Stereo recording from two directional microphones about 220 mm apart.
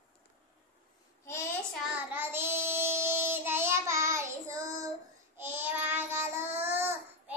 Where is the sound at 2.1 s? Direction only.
10° right (ahead or behind).